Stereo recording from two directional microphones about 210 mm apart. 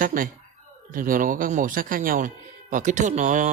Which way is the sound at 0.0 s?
40° right (ahead or behind).